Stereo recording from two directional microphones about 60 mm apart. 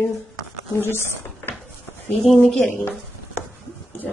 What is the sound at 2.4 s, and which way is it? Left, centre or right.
Speech, centre.